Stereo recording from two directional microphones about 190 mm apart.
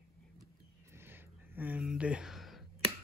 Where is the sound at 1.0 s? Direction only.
10° right (ahead or behind).